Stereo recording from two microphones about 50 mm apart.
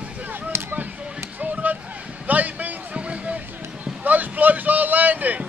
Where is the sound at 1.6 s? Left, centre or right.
Right.